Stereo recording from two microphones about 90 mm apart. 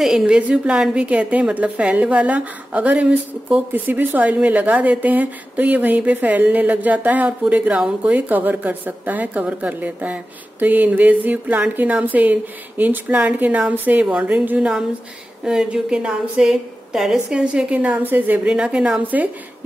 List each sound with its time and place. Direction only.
0.0 s a woman's voice: 5° right (ahead or behind)
0.4 s a woman's voice: 15° right (ahead or behind)